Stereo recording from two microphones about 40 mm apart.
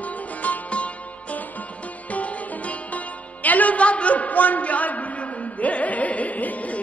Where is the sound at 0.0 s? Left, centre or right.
Left.